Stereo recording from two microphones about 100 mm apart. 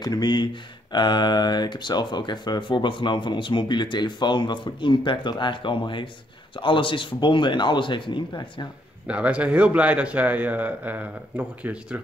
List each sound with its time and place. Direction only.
0.0 s speech: 45° left (ahead or behind)
8.3 s speech: 40° left (ahead or behind)
9.0 s a man's voice: 10° right (ahead or behind)